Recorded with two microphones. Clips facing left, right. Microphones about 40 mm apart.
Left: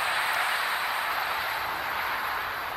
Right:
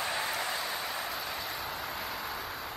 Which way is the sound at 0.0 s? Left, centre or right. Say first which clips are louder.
Left 6 dB; left.